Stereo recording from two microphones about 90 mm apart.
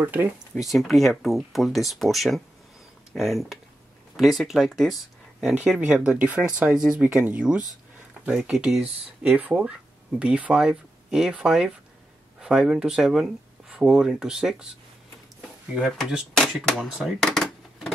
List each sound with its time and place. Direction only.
0.0 s speech: 20° right (ahead or behind)
0.6 s speech: centre (ahead or behind)
5.7 s speech: 10° right (ahead or behind)
16.3 s a sound: 5° left (ahead or behind)